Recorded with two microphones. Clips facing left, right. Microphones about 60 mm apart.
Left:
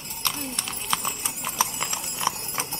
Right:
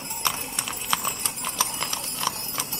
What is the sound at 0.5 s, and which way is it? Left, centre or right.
Clip-clop, centre.